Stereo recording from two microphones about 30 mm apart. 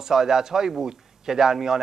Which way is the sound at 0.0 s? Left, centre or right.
Centre.